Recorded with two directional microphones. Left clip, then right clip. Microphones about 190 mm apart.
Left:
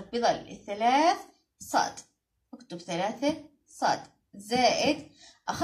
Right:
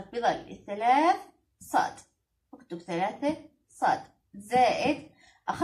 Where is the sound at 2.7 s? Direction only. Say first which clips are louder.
Right 1 dB; 40° left (ahead or behind).